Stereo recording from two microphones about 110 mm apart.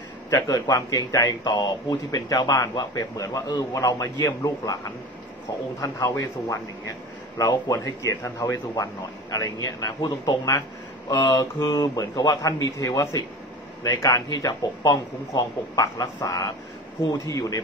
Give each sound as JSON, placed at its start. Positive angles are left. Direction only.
{"t": 0.3, "sound": "a man's voice", "side_deg": 30}